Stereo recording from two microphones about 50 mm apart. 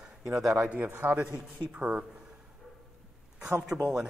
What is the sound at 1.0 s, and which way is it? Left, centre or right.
A man's voice, right.